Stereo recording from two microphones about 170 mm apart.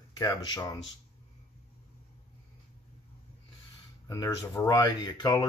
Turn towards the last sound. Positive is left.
turn(degrees=25)  # may be behind; listen again after turning